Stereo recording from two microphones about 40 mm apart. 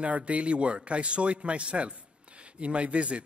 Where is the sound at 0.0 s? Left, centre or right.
Right.